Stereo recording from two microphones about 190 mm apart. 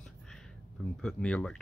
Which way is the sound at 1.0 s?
5° left (ahead or behind).